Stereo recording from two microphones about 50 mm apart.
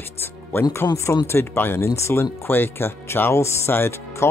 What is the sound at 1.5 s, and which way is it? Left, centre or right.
Speech, left.